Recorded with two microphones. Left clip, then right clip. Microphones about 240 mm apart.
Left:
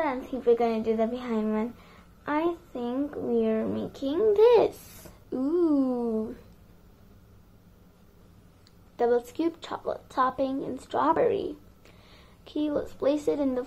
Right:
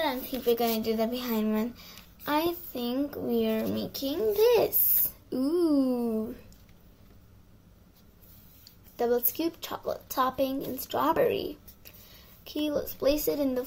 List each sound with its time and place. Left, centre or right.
0.0 s a child's voice: right
8.9 s a woman's voice: right